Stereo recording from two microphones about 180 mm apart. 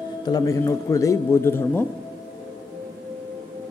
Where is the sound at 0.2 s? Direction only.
20° left (ahead or behind).